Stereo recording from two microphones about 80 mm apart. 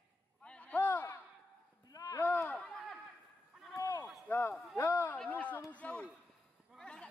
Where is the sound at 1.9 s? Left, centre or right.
Left.